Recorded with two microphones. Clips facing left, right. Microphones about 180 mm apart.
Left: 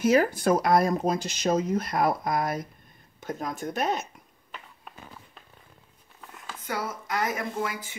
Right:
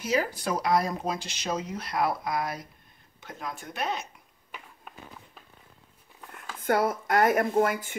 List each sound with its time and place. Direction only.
0.0 s speech: 50° left (ahead or behind)
4.5 s a sound: 5° right (ahead or behind)
6.6 s speech: 55° right (ahead or behind)